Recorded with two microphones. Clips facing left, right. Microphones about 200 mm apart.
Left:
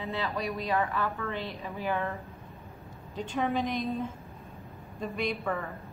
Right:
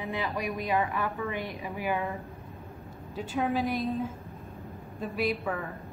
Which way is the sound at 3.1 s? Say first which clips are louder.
Right 1 dB; centre (ahead or behind).